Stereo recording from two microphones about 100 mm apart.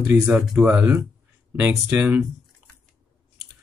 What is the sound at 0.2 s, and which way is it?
Speech, 10° right (ahead or behind).